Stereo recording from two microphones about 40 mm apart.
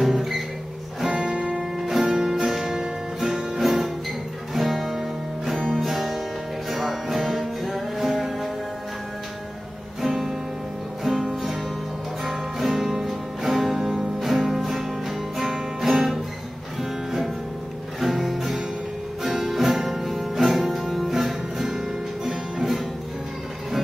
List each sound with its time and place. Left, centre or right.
0.0 s music: centre
1.1 s music: right
1.6 s music: centre
10.0 s music: centre
12.3 s music: centre
18.0 s music: centre